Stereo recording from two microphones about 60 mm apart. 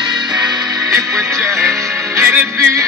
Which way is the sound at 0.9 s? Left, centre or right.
Right.